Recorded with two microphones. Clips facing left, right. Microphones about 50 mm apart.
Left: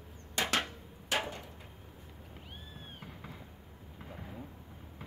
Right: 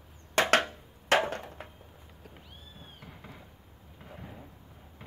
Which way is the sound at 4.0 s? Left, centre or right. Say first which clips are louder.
Even; centre.